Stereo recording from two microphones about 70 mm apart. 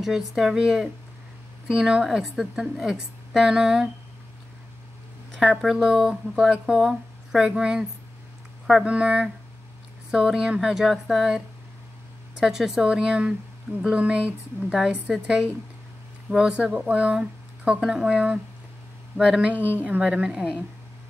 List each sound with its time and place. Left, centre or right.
0.0 s a woman's voice: centre
5.3 s a woman's voice: centre
16.3 s a woman's voice: centre
19.5 s a woman's voice: right